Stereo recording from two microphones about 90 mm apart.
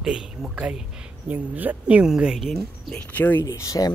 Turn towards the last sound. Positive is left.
turn(degrees=40)  # may be behind; listen again after turning